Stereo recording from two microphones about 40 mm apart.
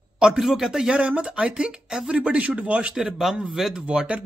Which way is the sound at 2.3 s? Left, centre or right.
Right.